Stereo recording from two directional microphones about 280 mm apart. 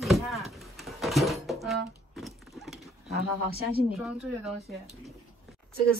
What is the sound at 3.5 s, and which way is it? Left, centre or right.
Speech, right.